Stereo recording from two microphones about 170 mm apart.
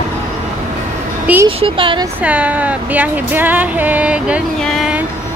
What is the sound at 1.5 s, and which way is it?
Speech, 30° right (ahead or behind).